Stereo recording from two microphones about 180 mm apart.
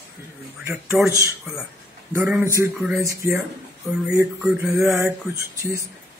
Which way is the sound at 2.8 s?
5° right (ahead or behind).